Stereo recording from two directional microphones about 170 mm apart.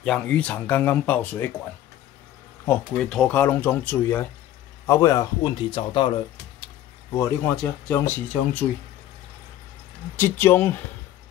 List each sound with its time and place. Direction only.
0.0 s speech: 5° left (ahead or behind)
2.6 s speech: 10° left (ahead or behind); by 6.2 s 30° left (ahead or behind)
7.2 s speech: 15° left (ahead or behind)
10.1 s speech: 10° left (ahead or behind)